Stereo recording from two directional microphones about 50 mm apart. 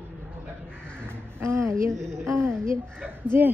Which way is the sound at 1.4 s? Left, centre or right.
Right.